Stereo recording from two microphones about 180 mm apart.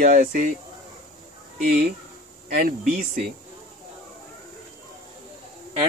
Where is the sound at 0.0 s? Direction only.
45° right (ahead or behind).